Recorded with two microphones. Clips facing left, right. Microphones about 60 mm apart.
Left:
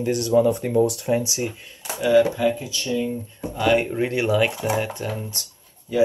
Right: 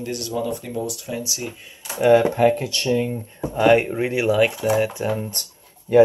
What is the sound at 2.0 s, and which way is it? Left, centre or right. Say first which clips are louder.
Speech: right 3 dB; right.